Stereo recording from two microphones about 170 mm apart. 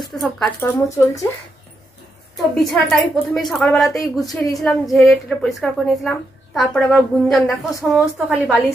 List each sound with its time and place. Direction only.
0.1 s a woman's voice: centre (ahead or behind)
0.6 s speech: 20° left (ahead or behind)
2.7 s a woman's voice: centre (ahead or behind)